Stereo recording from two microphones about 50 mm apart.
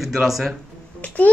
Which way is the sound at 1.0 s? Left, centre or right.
Left.